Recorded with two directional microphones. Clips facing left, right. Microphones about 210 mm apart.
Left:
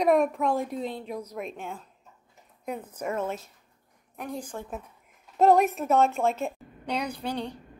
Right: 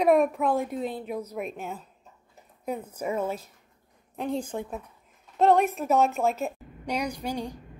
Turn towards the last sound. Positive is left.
turn(degrees=-10)  # may be behind; listen again after turning